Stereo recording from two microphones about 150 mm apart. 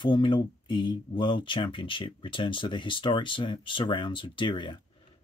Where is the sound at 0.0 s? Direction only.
30° left (ahead or behind).